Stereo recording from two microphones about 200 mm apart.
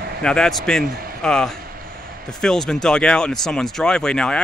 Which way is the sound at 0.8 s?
45° right (ahead or behind).